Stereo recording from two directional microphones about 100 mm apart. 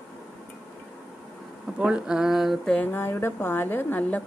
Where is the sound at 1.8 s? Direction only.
10° right (ahead or behind).